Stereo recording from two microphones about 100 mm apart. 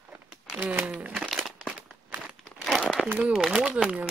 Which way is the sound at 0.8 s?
10° right (ahead or behind).